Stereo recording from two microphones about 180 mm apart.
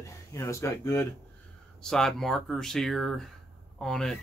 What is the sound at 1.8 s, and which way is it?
Speech, 5° left (ahead or behind).